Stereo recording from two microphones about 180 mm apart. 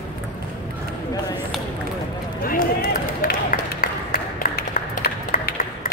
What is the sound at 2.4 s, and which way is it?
Run, 50° left (ahead or behind).